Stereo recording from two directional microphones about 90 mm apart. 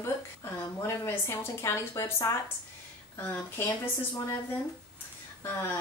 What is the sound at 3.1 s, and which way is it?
Speech, 20° left (ahead or behind).